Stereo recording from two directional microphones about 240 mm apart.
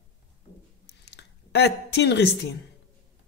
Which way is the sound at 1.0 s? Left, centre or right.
Left.